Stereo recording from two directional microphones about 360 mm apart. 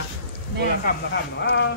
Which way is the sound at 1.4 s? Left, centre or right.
Left.